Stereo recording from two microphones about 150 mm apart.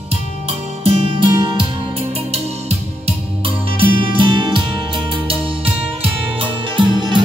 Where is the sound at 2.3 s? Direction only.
45° right (ahead or behind).